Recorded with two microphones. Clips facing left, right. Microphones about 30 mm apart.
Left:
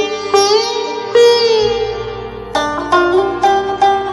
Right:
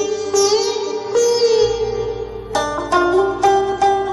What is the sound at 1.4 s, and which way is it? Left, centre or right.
Music, left.